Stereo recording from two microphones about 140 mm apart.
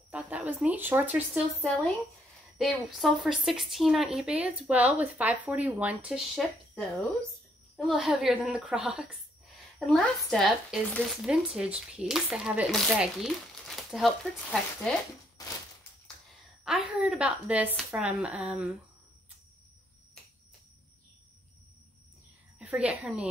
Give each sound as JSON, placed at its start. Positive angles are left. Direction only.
{"t": 0.1, "sound": "speech", "side_deg": -10}
{"t": 2.5, "sound": "speech", "side_deg": 0}
{"t": 11.2, "sound": "speech", "side_deg": -5}
{"t": 15.3, "sound": "a sound", "side_deg": 25}
{"t": 16.6, "sound": "speech", "side_deg": -5}
{"t": 22.6, "sound": "a woman's voice", "side_deg": -10}